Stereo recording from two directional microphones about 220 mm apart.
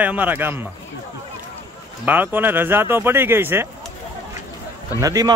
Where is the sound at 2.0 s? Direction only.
10° right (ahead or behind).